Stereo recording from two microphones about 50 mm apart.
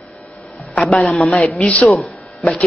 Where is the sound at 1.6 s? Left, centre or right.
Centre.